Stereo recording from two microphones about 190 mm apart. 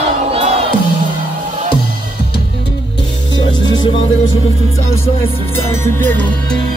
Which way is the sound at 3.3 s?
80° left.